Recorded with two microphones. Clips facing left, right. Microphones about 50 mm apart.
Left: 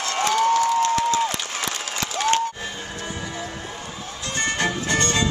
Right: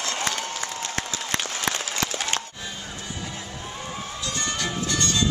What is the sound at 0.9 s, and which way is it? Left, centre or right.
Applause, right.